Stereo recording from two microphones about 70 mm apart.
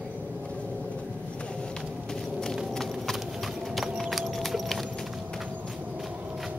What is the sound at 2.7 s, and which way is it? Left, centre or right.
Clip-clop, centre.